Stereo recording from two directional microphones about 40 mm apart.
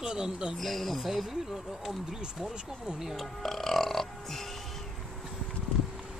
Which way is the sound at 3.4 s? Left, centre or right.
Centre.